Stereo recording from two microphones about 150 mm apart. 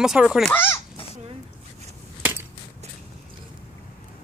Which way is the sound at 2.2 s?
15° right (ahead or behind).